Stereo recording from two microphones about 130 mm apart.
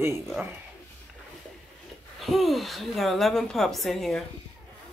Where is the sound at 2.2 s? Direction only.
Centre (ahead or behind).